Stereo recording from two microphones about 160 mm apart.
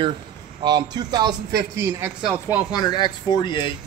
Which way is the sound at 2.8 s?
25° left (ahead or behind).